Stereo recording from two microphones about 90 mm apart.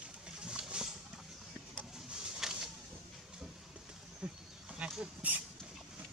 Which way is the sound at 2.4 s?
5° right (ahead or behind).